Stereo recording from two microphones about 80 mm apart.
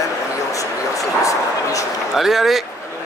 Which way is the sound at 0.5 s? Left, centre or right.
Left.